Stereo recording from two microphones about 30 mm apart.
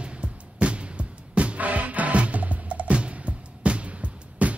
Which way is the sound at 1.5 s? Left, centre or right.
Right.